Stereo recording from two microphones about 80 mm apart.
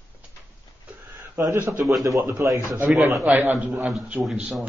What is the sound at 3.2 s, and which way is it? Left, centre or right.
Speech, right.